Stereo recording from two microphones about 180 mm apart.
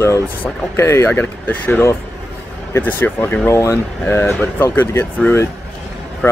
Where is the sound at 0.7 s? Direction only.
15° left (ahead or behind).